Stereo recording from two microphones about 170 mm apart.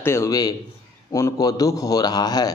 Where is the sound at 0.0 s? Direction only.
15° left (ahead or behind).